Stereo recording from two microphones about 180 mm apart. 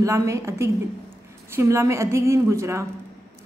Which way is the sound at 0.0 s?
15° right (ahead or behind).